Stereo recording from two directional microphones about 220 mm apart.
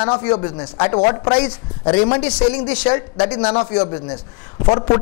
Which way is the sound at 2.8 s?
25° left (ahead or behind).